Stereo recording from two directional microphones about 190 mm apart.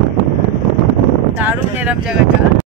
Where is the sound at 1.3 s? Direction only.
10° right (ahead or behind).